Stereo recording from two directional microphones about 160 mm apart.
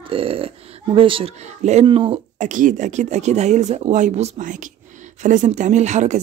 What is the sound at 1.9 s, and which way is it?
Speech, 35° right (ahead or behind).